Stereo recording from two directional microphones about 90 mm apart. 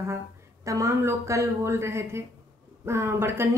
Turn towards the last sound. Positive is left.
turn(degrees=-30)  # may be behind; listen again after turning